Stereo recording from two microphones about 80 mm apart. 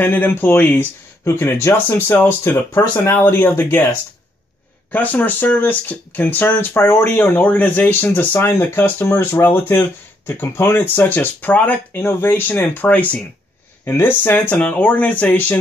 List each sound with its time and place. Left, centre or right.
0.0 s speech: left
4.9 s speech: left
11.9 s speech: left